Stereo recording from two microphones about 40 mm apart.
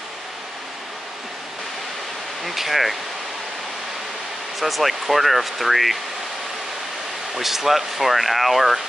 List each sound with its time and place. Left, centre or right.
2.4 s speech: centre
4.6 s speech: centre
7.3 s speech: centre